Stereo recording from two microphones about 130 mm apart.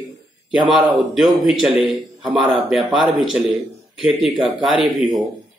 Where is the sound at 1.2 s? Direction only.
5° right (ahead or behind).